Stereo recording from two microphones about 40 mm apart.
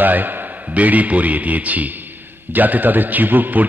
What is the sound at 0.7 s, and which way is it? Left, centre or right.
A man's voice, right.